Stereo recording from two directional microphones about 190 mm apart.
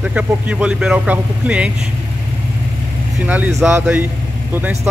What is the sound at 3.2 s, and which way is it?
Speech, 5° right (ahead or behind).